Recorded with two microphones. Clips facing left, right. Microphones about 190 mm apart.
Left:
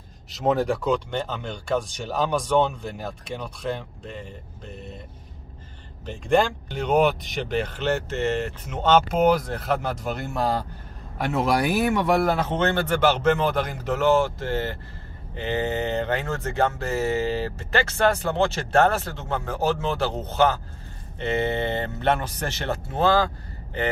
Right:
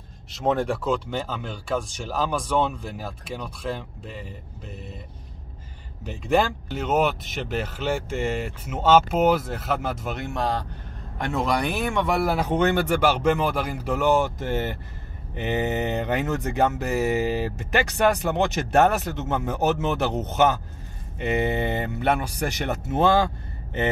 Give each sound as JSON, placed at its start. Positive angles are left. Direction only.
{"t": 0.3, "sound": "speech", "side_deg": 0}
{"t": 6.0, "sound": "speech", "side_deg": -5}